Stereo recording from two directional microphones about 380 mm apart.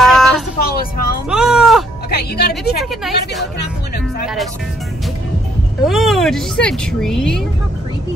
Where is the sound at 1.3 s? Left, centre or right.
Centre.